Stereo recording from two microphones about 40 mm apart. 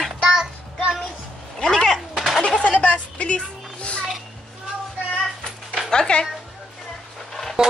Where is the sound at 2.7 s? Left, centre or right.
Left.